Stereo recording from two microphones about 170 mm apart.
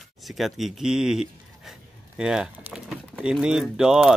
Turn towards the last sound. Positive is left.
turn(degrees=-5)  # may be behind; listen again after turning